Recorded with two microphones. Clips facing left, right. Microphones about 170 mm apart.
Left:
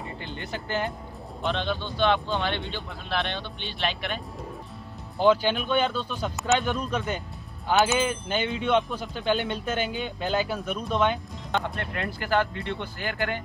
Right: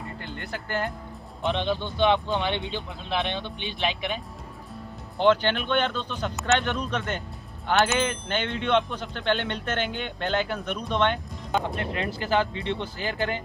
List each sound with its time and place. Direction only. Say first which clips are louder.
0.2 s speech: left 1 dB; centre (ahead or behind)
1.4 s speech: right 2 dB; 15° right (ahead or behind)
5.2 s speech: even; 5° left (ahead or behind)
13.0 s speech: even; 25° right (ahead or behind)